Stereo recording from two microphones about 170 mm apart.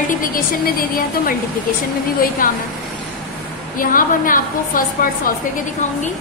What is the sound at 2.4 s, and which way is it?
Speech, 55° left (ahead or behind).